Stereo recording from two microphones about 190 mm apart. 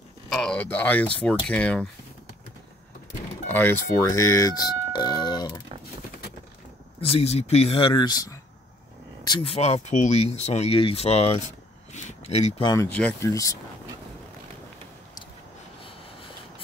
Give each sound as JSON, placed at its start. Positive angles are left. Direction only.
{"t": 0.3, "sound": "speech", "side_deg": 5}
{"t": 3.4, "sound": "speech", "side_deg": 10}
{"t": 7.0, "sound": "speech", "side_deg": 30}
{"t": 12.9, "sound": "speech", "side_deg": 10}
{"t": 15.8, "sound": "a sound", "side_deg": 30}